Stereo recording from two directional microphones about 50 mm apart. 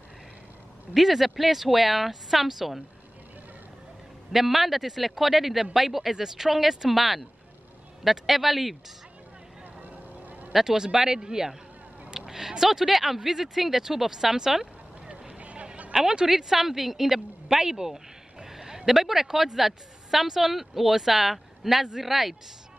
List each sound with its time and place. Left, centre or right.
0.9 s speech: centre
4.3 s a man's voice: centre
9.8 s vehicle: right
10.5 s speech: centre
15.0 s a sound: right
15.9 s a woman's voice: centre